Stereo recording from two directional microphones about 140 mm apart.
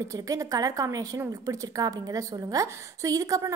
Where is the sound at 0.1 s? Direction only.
25° right (ahead or behind).